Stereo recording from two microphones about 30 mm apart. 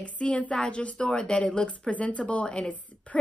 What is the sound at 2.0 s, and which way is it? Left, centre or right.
Speech, left.